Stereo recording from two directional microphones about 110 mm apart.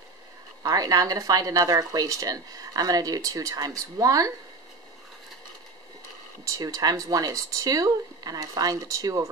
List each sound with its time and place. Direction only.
0.7 s speech: 35° right (ahead or behind)
6.4 s speech: 35° right (ahead or behind)